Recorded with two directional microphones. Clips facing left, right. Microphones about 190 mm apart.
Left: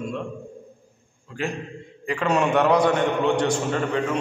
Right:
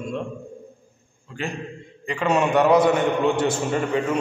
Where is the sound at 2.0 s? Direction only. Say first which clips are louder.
Right 1 dB; centre (ahead or behind).